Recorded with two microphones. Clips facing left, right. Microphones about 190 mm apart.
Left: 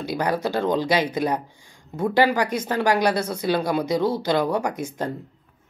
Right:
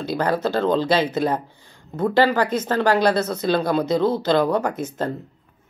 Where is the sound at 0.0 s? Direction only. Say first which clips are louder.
Right 2 dB; 15° left (ahead or behind).